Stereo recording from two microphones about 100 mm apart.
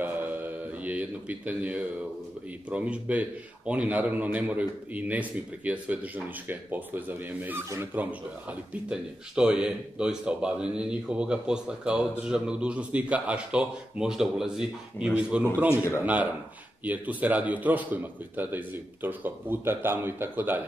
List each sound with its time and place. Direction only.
0.8 s speech: 15° right (ahead or behind)
15.7 s a man's voice: 25° left (ahead or behind)
16.0 s speech: 15° right (ahead or behind)